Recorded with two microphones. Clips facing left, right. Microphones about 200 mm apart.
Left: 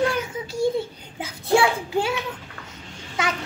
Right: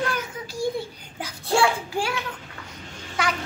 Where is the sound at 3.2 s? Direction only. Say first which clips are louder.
Even; 20° left (ahead or behind).